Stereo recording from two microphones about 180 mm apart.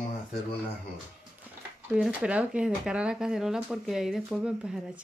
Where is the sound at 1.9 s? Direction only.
5° right (ahead or behind).